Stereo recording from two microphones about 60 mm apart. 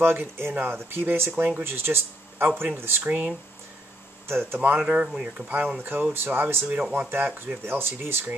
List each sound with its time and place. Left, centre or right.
0.0 s speech: right
4.3 s speech: right
4.6 s speech: right